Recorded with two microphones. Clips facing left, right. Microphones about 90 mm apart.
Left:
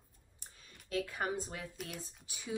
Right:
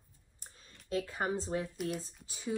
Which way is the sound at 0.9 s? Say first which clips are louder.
Right 2 dB; 25° right (ahead or behind).